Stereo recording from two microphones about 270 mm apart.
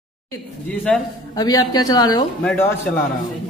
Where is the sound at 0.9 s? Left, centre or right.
Centre.